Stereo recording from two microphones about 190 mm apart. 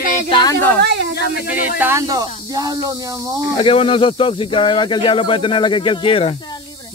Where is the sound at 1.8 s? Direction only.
15° right (ahead or behind).